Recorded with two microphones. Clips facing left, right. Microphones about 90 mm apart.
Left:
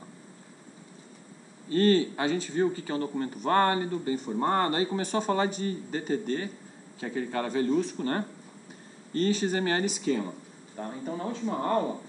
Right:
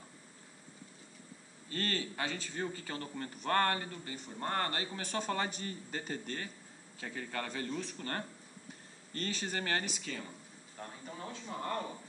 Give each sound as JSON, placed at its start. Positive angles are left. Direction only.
{"t": 1.7, "sound": "a man's voice", "side_deg": 20}
{"t": 10.8, "sound": "speech", "side_deg": 40}